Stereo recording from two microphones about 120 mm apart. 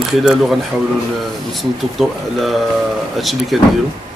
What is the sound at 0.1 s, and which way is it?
Speech, centre (ahead or behind).